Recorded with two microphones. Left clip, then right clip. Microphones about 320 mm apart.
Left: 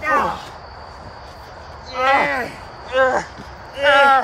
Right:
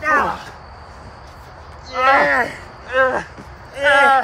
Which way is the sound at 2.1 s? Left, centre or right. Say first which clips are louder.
Right 4 dB; centre.